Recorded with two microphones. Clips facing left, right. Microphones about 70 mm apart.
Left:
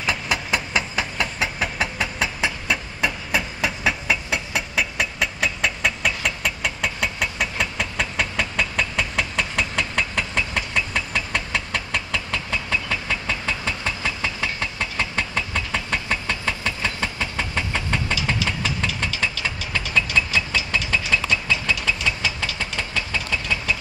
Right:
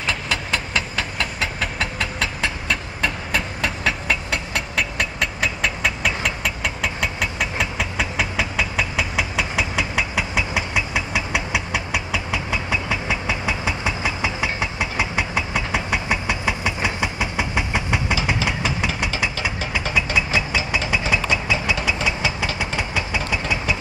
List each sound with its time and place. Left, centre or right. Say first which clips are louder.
0.0 s vehicle: even; centre
20.3 s a sound: right 1 dB; centre
21.1 s vehicle: even; centre